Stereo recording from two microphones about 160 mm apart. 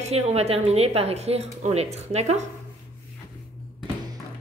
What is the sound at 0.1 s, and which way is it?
Speech, 40° right (ahead or behind).